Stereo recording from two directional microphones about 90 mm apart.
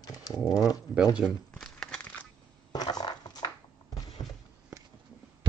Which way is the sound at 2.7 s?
50° left (ahead or behind).